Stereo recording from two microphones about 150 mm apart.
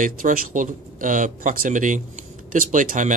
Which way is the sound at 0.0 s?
65° right (ahead or behind).